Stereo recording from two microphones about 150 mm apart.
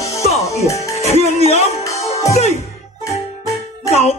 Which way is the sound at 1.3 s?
45° left (ahead or behind).